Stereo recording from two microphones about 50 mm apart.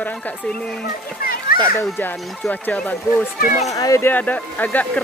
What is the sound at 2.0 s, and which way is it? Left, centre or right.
Music, left.